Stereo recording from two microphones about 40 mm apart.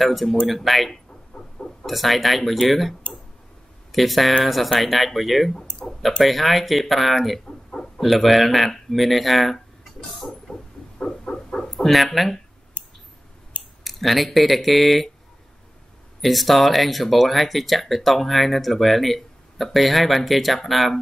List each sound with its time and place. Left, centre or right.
0.0 s speech: centre
1.3 s a sound: centre
1.9 s speech: centre
7.4 s chicken: centre
8.0 s speech: centre
10.5 s a sound: centre
13.8 s speech: centre
16.2 s speech: centre